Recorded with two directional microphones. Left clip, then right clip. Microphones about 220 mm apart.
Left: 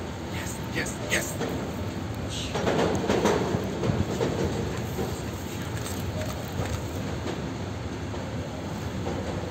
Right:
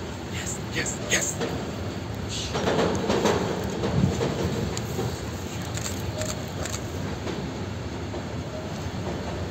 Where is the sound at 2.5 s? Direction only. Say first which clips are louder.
Right 1 dB; 15° right (ahead or behind).